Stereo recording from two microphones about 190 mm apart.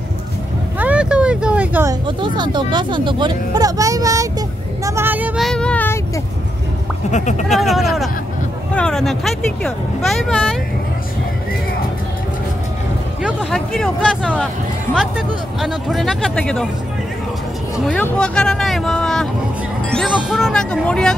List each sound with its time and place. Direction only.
0.7 s vehicle: 5° right (ahead or behind)
2.0 s speech: 25° right (ahead or behind); by 5.9 s 5° left (ahead or behind)
7.1 s speech: 40° left (ahead or behind)
7.4 s speech: centre (ahead or behind)
13.2 s speech: centre (ahead or behind)
17.7 s speech: centre (ahead or behind)